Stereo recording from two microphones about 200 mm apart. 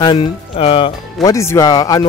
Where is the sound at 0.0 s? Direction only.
25° left (ahead or behind).